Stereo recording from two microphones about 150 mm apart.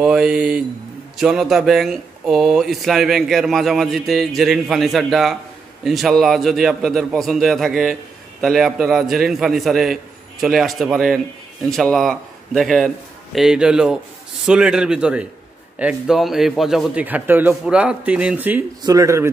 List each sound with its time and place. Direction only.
0.0 s a man's voice: 5° right (ahead or behind)
18.8 s speech: 25° right (ahead or behind)